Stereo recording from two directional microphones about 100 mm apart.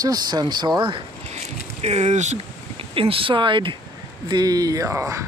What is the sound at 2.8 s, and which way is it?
Speech, 65° right (ahead or behind).